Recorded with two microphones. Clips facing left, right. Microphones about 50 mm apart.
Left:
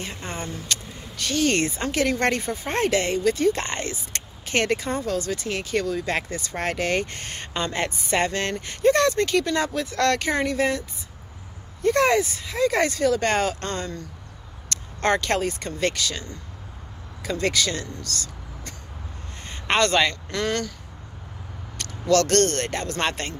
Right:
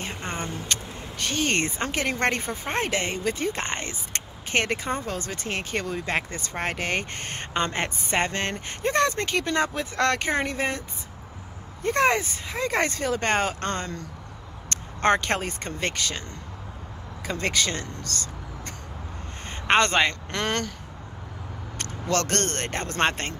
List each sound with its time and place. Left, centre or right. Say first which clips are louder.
0.2 s speech: right 1 dB; right
11.8 s speech: left 3 dB; right
14.7 s speech: right 1 dB; right
17.3 s speech: left 2 dB; right
18.0 s vehicle: even; right
19.7 s speech: even; right
20.2 s speech: left 1 dB; right
21.7 s speech: left 6 dB; right